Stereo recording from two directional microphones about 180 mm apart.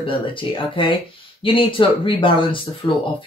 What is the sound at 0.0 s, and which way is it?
Speech, 30° left (ahead or behind).